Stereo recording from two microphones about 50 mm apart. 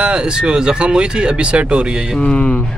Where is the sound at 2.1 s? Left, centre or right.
Left.